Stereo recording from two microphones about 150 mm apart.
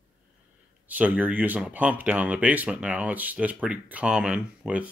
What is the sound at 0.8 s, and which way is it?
Speech, 10° right (ahead or behind).